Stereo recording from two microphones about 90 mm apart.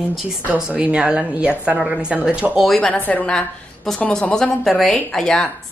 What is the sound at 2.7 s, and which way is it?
Speech, 5° left (ahead or behind).